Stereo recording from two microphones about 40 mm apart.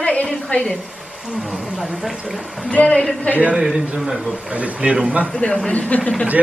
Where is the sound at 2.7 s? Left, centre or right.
Left.